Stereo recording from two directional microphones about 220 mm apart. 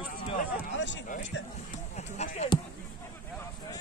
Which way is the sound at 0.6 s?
55° left (ahead or behind).